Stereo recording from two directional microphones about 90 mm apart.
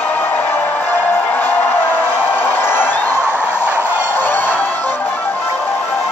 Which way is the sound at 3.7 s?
20° right (ahead or behind).